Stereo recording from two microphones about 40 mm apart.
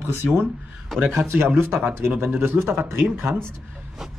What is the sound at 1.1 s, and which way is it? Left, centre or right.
Speech, right.